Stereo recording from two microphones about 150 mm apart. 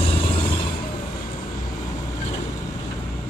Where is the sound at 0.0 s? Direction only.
40° left (ahead or behind).